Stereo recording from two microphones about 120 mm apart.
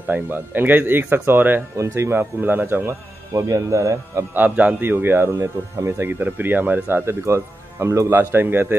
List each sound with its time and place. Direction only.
0.1 s speech: 15° right (ahead or behind)
4.6 s speech: 15° right (ahead or behind)